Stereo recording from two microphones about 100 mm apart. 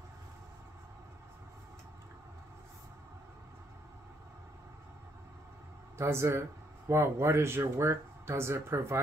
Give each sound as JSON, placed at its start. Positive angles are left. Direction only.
{"t": 5.9, "sound": "speech", "side_deg": -25}